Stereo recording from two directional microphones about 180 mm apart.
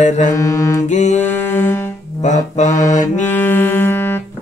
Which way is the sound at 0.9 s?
40° left (ahead or behind).